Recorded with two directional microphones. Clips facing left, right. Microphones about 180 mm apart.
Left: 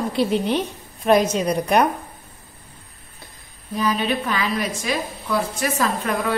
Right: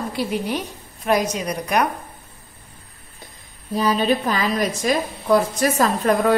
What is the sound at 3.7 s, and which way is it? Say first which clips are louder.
A woman's voice: right 3 dB; 35° right (ahead or behind).